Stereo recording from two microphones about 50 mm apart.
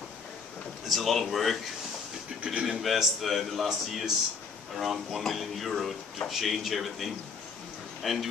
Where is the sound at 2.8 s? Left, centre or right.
Centre.